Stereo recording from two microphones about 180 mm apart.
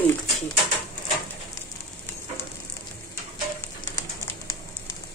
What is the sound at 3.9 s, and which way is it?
Pigeon, 20° left (ahead or behind).